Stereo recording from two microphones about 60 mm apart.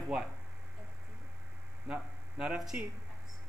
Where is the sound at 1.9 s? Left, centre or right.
Right.